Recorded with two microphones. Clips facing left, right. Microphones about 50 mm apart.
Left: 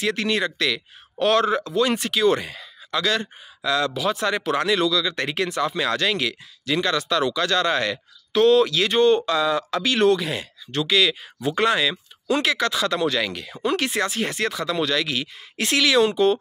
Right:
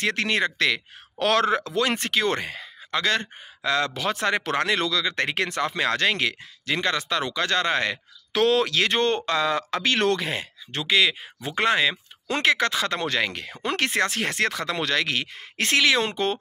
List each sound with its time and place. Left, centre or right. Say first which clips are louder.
0.0 s speech: left 1 dB; right
1.2 s speech: left 2 dB; right
2.0 s speech: left 4 dB; right
8.3 s speech: left 5 dB; right
9.9 s speech: left 6 dB; right
10.2 s speech: left 1 dB; right
15.8 s speech: left 4 dB; right
16.1 s speech: left 7 dB; right